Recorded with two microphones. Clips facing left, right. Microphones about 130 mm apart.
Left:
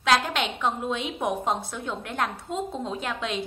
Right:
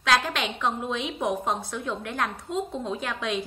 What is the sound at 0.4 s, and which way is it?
A woman's voice, 25° left (ahead or behind).